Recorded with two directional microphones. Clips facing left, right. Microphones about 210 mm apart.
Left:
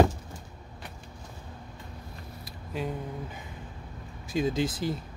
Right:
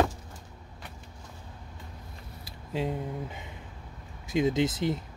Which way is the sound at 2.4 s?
25° right (ahead or behind).